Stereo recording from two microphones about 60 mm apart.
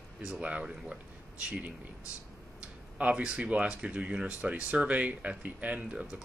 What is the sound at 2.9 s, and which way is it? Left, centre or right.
Speech, right.